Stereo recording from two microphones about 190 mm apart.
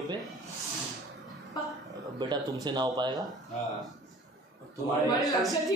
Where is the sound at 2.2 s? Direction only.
25° right (ahead or behind).